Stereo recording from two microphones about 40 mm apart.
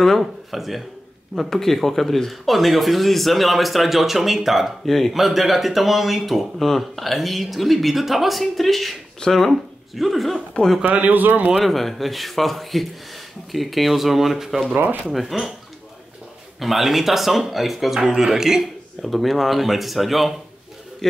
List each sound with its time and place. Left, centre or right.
0.0 s speech: centre
1.5 s speech: centre
4.8 s speech: centre
10.9 s speech: right
11.5 s speech: centre
16.5 s speech: centre
19.0 s speech: centre
21.0 s speech: centre